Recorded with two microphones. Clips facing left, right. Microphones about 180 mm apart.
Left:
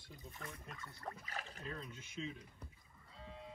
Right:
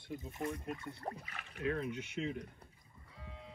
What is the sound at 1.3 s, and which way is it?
Speech, 35° left (ahead or behind).